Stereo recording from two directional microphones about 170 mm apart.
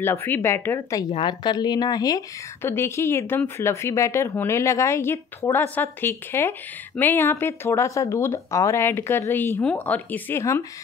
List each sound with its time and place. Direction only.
0.0 s speech: 15° left (ahead or behind)